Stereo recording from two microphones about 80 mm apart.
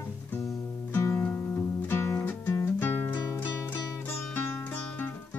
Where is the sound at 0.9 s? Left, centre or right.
Left.